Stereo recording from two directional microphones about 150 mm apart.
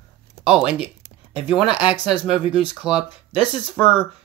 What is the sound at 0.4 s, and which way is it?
Speech, 5° right (ahead or behind).